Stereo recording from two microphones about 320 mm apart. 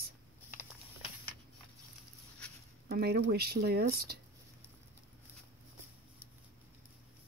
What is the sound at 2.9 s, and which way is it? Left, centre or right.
Speech, right.